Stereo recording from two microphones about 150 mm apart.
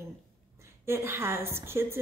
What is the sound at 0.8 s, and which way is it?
Speech, 15° right (ahead or behind).